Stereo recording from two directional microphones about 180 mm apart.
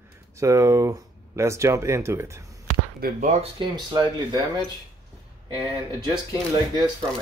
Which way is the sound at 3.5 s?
25° right (ahead or behind).